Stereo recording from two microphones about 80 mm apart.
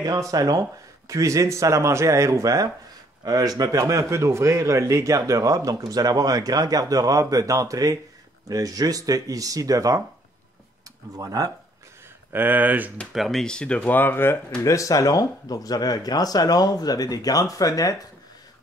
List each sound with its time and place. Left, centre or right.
0.0 s speech: right
11.1 s speech: right
12.3 s speech: right
13.1 s speech: centre; by 14.4 s left
14.6 s speech: left